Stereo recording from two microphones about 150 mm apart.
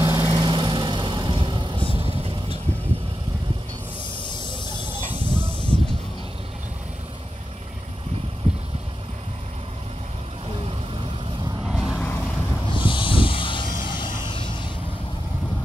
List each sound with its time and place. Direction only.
0.0 s vehicle: 20° right (ahead or behind)
0.3 s vehicle: 30° right (ahead or behind)
4.3 s hiss: 30° left (ahead or behind)
5.2 s a sound: 30° left (ahead or behind)
11.6 s vehicle: 5° right (ahead or behind)
11.9 s vehicle: 10° left (ahead or behind)
12.6 s a sound: 35° left (ahead or behind)